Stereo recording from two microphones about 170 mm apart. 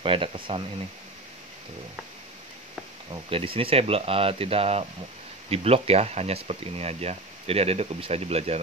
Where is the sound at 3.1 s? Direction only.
35° right (ahead or behind).